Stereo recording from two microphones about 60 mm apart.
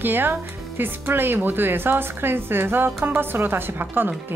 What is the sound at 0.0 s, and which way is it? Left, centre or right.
Speech, right.